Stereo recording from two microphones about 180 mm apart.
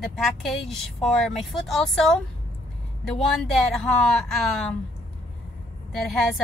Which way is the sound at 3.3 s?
Centre (ahead or behind).